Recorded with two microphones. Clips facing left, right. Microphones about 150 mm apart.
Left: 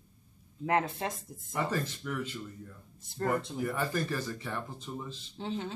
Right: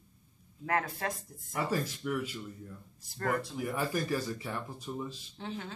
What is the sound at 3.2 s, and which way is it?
Speech, 20° left (ahead or behind).